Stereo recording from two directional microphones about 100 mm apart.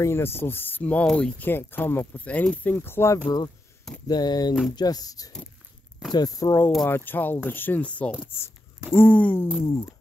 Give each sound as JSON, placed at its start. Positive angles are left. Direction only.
{"t": 0.0, "sound": "speech", "side_deg": 25}
{"t": 1.4, "sound": "speech", "side_deg": 20}
{"t": 3.3, "sound": "speech", "side_deg": 40}
{"t": 6.9, "sound": "speech", "side_deg": 20}
{"t": 9.7, "sound": "speech", "side_deg": 35}